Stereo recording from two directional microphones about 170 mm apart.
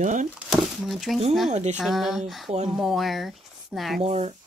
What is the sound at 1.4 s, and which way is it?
Speech, 40° right (ahead or behind).